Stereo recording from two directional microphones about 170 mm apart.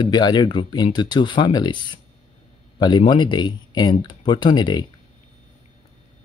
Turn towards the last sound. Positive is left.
turn(degrees=25)  # may be behind; listen again after turning